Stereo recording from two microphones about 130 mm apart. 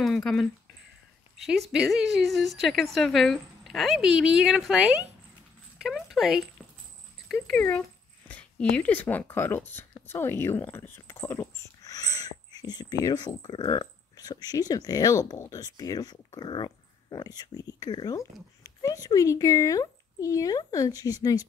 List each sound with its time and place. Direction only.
0.0 s a woman's voice: 5° left (ahead or behind)
8.3 s speech: 10° left (ahead or behind); by 21.5 s 30° left (ahead or behind)